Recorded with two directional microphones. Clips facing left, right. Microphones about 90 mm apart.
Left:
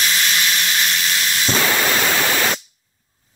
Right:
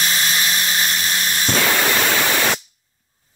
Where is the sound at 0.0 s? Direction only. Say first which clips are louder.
Left 1 dB; 35° right (ahead or behind).